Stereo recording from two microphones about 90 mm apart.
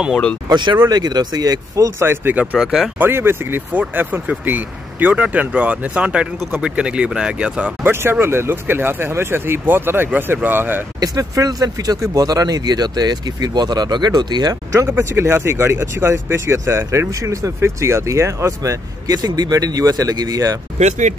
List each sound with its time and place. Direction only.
0.1 s speech: 10° left (ahead or behind)
0.5 s speech: 55° right (ahead or behind)
1.9 s speech: 25° right (ahead or behind)
2.6 s speech: 5° right (ahead or behind)
3.0 s speech: 25° right (ahead or behind)
7.8 s speech: 25° right (ahead or behind)
11.0 s speech: 40° right (ahead or behind)
15.0 s speech: 30° right (ahead or behind)